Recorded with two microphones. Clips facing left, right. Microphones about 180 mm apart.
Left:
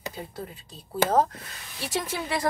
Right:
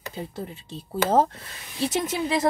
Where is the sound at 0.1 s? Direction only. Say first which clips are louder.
Right 3 dB; 25° right (ahead or behind).